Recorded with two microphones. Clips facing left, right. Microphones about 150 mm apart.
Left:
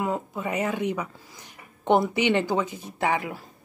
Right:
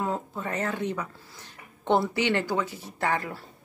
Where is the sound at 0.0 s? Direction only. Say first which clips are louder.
Left 2 dB; 10° left (ahead or behind).